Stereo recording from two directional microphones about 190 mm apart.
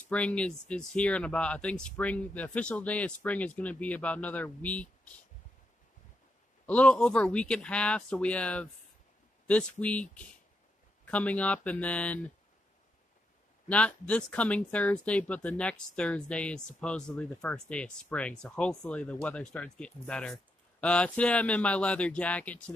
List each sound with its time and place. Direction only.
0.1 s speech: 5° left (ahead or behind)
6.6 s speech: 5° left (ahead or behind)
13.7 s speech: 5° left (ahead or behind)